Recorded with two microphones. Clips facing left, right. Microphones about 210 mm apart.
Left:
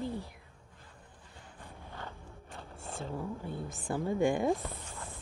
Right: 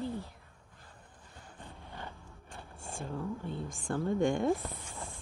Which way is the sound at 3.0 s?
15° left (ahead or behind).